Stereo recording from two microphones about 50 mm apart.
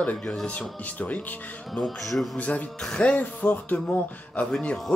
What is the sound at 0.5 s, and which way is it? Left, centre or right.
Speech, left.